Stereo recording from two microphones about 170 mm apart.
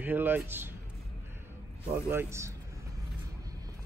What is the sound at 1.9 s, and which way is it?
Speech, 15° right (ahead or behind).